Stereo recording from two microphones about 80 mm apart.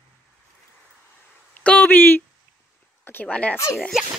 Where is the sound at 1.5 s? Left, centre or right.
Centre.